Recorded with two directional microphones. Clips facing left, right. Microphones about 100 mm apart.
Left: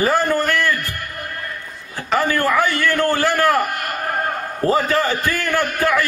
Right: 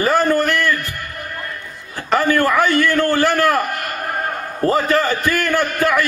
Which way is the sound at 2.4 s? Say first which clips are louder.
Right 2 dB; 15° left (ahead or behind).